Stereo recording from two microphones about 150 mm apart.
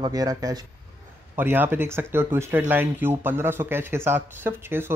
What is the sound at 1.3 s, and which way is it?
Speech, 15° right (ahead or behind).